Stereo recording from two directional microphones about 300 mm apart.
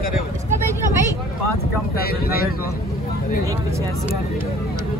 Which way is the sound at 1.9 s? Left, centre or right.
Left.